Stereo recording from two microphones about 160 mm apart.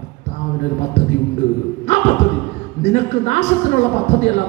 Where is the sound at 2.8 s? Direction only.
45° left (ahead or behind).